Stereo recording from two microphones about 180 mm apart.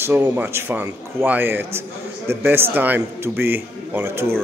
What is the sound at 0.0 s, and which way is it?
A man's voice, 10° right (ahead or behind).